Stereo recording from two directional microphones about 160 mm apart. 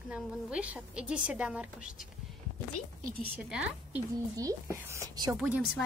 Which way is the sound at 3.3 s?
5° right (ahead or behind).